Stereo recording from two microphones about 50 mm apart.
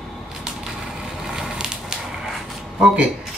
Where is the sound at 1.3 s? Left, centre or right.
Centre.